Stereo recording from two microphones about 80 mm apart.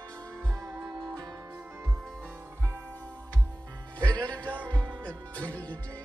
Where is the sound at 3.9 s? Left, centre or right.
Centre.